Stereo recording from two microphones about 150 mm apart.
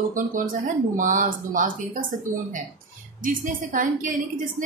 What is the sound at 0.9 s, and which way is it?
A woman's voice, 60° right (ahead or behind).